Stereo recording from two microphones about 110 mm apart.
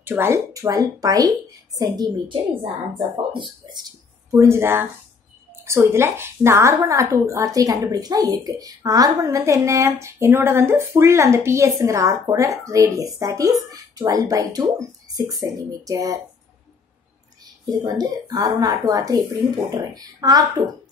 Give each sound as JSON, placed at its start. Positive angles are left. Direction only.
{"t": 0.0, "sound": "speech", "side_deg": -20}
{"t": 0.5, "sound": "speech", "side_deg": -30}
{"t": 3.3, "sound": "speech", "side_deg": -45}
{"t": 4.3, "sound": "speech", "side_deg": -25}
{"t": 17.6, "sound": "speech", "side_deg": -35}